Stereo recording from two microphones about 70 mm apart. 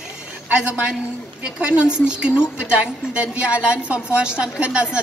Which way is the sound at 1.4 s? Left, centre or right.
Centre.